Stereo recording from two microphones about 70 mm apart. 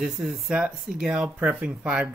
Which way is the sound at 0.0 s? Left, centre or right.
Centre.